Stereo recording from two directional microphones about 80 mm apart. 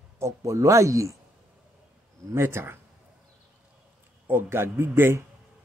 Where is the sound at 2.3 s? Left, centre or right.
Right.